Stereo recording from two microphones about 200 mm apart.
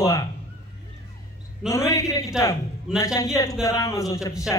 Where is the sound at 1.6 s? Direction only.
15° left (ahead or behind).